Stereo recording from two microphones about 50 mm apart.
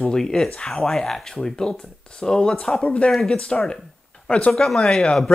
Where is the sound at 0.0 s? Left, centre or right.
Centre.